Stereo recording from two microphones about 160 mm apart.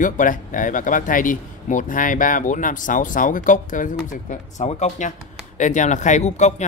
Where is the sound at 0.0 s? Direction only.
55° left (ahead or behind).